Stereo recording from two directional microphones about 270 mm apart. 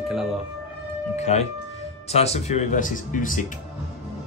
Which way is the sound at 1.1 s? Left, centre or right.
Left.